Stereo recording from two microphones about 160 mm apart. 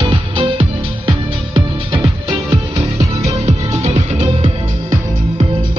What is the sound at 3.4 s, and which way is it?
Music, 45° right (ahead or behind).